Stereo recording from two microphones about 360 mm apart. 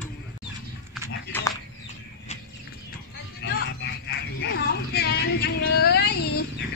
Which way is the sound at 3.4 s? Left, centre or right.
Left.